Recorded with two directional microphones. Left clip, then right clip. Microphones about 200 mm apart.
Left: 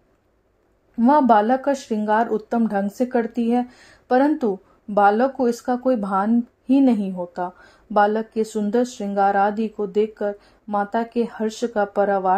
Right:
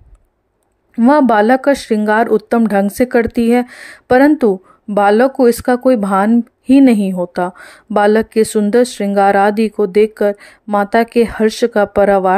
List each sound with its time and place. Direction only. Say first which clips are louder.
0.9 s speech: right 5 dB; 30° right (ahead or behind)